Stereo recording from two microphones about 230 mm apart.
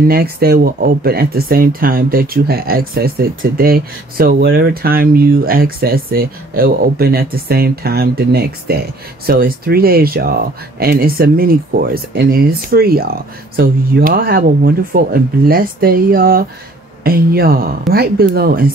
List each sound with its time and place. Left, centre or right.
0.1 s speech: right